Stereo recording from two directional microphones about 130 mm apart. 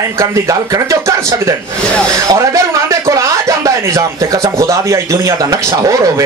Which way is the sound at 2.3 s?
25° right (ahead or behind).